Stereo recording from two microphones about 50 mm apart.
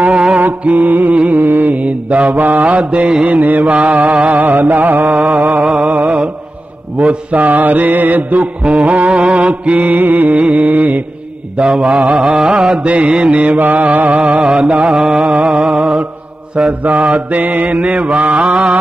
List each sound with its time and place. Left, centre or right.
0.0 s mantra: right
0.4 s mantra: right
1.1 s music: right
1.8 s mantra: right
2.6 s mantra: right
3.2 s mantra: right
11.6 s mantra: centre
14.5 s mantra: centre